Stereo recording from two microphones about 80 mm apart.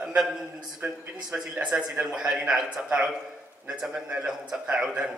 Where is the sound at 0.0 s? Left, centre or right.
Centre.